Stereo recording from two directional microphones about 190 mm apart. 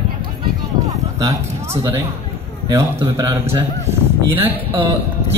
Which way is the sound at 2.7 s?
15° right (ahead or behind).